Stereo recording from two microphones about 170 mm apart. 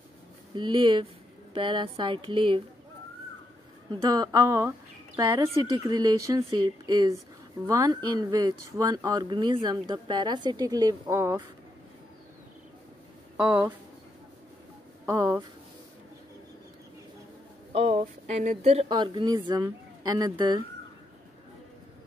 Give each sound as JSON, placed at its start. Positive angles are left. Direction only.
{"t": 0.6, "sound": "speech", "side_deg": -25}
{"t": 3.9, "sound": "a woman's voice", "side_deg": -20}
{"t": 13.4, "sound": "speech", "side_deg": -15}
{"t": 15.0, "sound": "speech", "side_deg": -15}
{"t": 17.7, "sound": "speech", "side_deg": -35}